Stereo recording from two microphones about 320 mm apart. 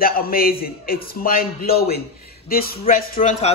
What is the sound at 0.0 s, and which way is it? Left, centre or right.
A man's voice, left.